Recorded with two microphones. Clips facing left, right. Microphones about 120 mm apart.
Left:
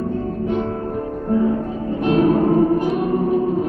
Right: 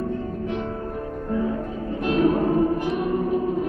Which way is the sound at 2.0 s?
25° left (ahead or behind).